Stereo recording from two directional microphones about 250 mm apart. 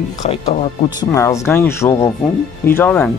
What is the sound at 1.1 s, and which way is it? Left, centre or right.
Speech, centre.